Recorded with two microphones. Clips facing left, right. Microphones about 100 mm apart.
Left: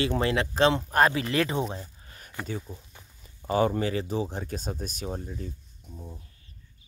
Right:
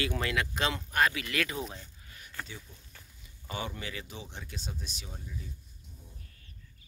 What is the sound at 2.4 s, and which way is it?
Speech, 40° left (ahead or behind).